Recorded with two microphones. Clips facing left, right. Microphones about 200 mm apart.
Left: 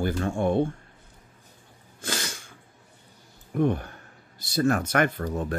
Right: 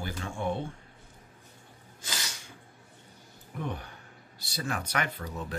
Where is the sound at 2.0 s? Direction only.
55° left (ahead or behind).